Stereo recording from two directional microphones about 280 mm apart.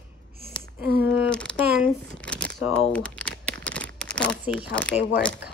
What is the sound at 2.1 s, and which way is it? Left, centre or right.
Shuffling cards, centre.